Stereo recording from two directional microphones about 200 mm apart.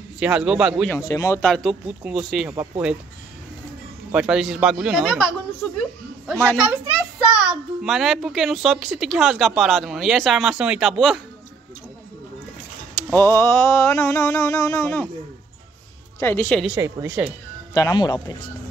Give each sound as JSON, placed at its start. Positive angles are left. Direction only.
{"t": 0.2, "sound": "a child's voice", "side_deg": -5}
{"t": 0.9, "sound": "a child's voice", "side_deg": 15}
{"t": 4.1, "sound": "a child's voice", "side_deg": -5}
{"t": 6.4, "sound": "a child's voice", "side_deg": -5}
{"t": 13.1, "sound": "mantra", "side_deg": 10}
{"t": 16.2, "sound": "mantra", "side_deg": 10}
{"t": 16.6, "sound": "a woman's voice", "side_deg": -10}
{"t": 17.7, "sound": "speech", "side_deg": 20}